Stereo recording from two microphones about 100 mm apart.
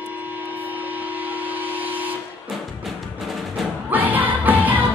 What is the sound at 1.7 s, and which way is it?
Vehicle, 15° right (ahead or behind).